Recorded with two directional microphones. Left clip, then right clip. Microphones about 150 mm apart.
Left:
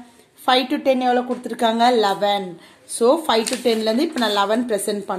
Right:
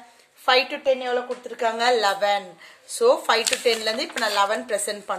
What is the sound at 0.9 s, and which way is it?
Speech, 35° left (ahead or behind).